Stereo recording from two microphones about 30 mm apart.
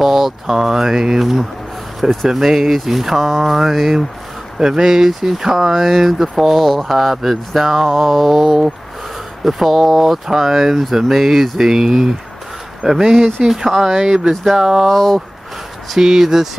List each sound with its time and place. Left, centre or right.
0.0 s speech: centre
13.7 s speech: centre
14.9 s speech: centre
16.0 s speech: centre